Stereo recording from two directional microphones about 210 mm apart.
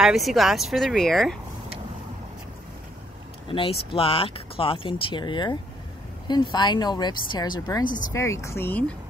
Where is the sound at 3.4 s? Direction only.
25° left (ahead or behind); by 8.8 s 10° left (ahead or behind).